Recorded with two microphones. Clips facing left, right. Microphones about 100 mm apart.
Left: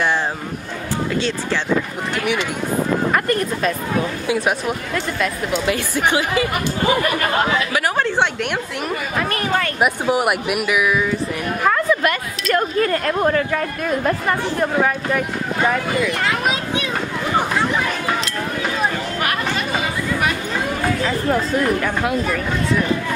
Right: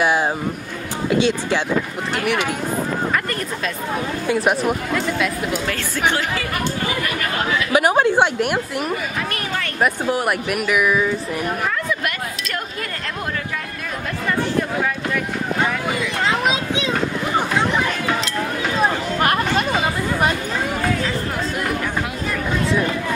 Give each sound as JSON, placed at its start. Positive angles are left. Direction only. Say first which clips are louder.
{"t": 1.1, "sound": "a woman's voice", "louder": "right 7 dB", "side_deg": -15}
{"t": 4.3, "sound": "speech", "louder": "right 4 dB", "side_deg": 0}
{"t": 5.7, "sound": "speech", "louder": "left 4 dB", "side_deg": 15}
{"t": 7.7, "sound": "a woman's voice", "louder": "right 4 dB", "side_deg": -15}
{"t": 9.8, "sound": "speech", "louder": "right 1 dB", "side_deg": 15}
{"t": 12.0, "sound": "speech", "louder": "left 5 dB", "side_deg": 45}
{"t": 16.3, "sound": "speech", "louder": "right 1 dB", "side_deg": -20}
{"t": 19.1, "sound": "chatter", "louder": "right 3 dB", "side_deg": -35}